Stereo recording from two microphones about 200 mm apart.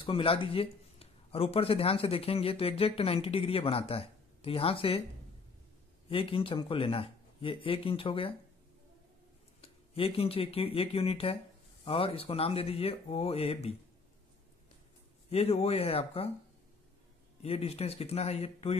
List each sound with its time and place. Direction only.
0.0 s speech: 25° left (ahead or behind)
6.0 s speech: 25° left (ahead or behind)
9.6 s speech: 30° left (ahead or behind)
15.2 s speech: 30° left (ahead or behind)
17.4 s speech: 30° left (ahead or behind)